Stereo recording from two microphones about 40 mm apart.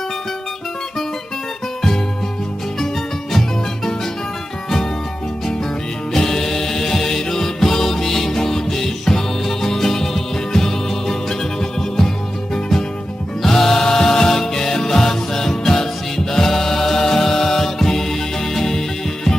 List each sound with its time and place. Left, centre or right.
6.1 s music: centre
13.4 s music: centre